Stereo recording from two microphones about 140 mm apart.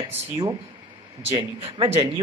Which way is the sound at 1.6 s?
45° right (ahead or behind).